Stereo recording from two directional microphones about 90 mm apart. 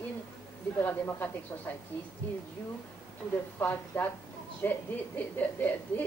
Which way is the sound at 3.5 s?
20° left (ahead or behind).